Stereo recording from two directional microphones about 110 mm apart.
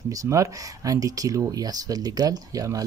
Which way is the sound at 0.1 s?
30° right (ahead or behind).